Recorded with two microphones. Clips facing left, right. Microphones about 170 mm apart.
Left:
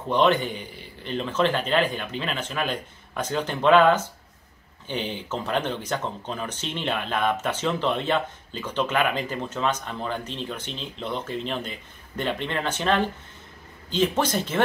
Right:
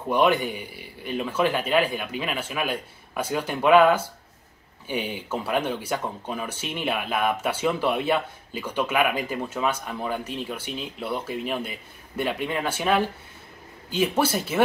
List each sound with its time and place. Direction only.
0.1 s speech: 10° right (ahead or behind)